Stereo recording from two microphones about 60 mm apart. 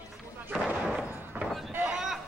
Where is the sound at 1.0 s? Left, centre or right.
Centre.